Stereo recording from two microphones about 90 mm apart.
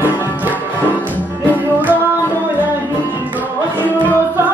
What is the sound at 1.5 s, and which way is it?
Music, 20° right (ahead or behind).